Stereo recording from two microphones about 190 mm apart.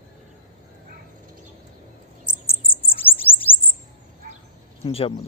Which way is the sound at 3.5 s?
30° left (ahead or behind).